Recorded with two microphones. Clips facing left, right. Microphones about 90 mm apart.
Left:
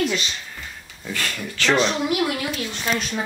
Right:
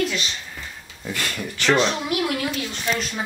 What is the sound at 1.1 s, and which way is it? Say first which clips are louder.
Speech: even; 15° right (ahead or behind).